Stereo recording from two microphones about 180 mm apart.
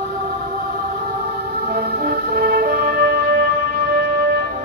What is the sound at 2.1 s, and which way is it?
Music, 55° right (ahead or behind).